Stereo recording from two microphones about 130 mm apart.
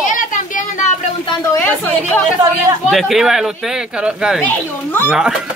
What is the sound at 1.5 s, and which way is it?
Speech, 15° left (ahead or behind).